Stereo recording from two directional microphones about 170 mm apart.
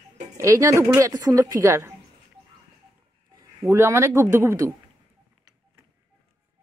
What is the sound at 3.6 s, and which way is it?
A man's voice, 15° right (ahead or behind).